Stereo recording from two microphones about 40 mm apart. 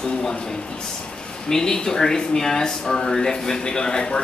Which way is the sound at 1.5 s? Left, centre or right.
Centre.